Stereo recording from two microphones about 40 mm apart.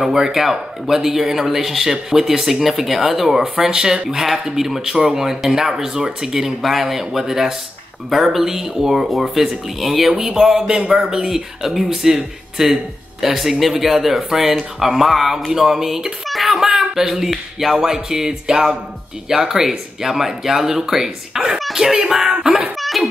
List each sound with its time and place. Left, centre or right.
0.0 s a man's voice: centre
3.5 s a man's voice: centre
6.6 s a man's voice: centre
22.3 s speech: right
22.8 s a sound: centre